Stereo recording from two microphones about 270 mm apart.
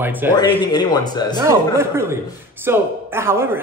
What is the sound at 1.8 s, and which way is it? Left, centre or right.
Speech, centre.